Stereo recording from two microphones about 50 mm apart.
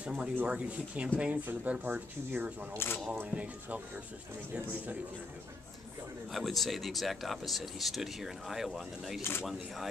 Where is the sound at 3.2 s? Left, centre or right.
Right.